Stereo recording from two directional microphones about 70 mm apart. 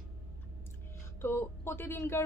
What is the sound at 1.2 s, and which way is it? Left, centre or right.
Speech, left.